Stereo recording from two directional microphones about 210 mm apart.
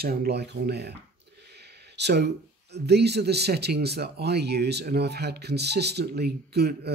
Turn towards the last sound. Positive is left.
turn(degrees=-50)  # may be behind; listen again after turning